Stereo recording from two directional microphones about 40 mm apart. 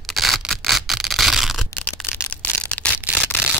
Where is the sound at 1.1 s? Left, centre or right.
Centre.